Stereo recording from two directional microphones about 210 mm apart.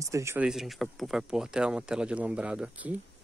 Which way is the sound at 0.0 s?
15° right (ahead or behind).